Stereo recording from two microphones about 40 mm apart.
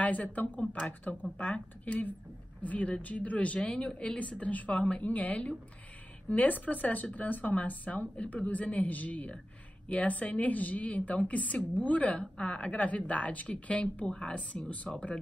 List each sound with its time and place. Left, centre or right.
0.0 s a woman's voice: left
4.7 s a woman's voice: left
12.1 s a woman's voice: left
14.0 s a woman's voice: left
14.5 s a woman's voice: left